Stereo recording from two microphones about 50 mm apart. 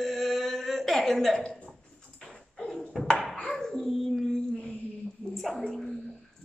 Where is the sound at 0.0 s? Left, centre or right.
Centre.